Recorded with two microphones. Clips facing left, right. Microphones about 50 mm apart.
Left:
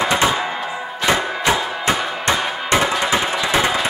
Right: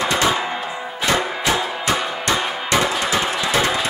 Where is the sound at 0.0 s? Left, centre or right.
Centre.